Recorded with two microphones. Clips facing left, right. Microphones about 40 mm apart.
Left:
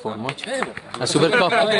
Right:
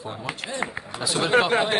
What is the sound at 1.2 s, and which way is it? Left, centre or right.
Speech, left.